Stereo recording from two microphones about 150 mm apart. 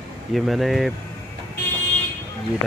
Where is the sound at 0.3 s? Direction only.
Centre (ahead or behind).